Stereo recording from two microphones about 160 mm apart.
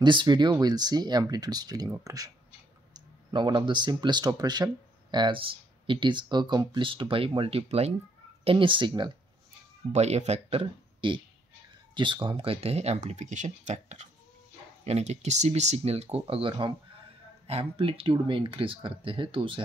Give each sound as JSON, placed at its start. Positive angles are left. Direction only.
{"t": 0.0, "sound": "speech", "side_deg": -30}
{"t": 9.9, "sound": "speech", "side_deg": -45}